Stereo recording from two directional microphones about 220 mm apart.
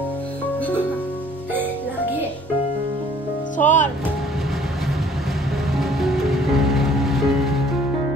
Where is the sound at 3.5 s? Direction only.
35° left (ahead or behind).